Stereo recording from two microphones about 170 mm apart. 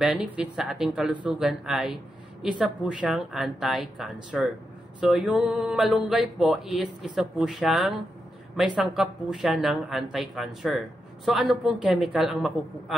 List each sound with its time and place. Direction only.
0.0 s speech: 5° right (ahead or behind)